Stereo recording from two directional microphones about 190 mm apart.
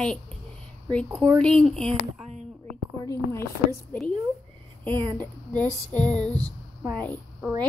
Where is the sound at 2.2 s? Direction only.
35° right (ahead or behind).